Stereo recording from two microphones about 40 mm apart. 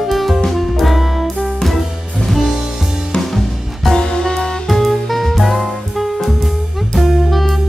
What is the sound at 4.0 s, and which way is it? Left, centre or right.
Music, centre.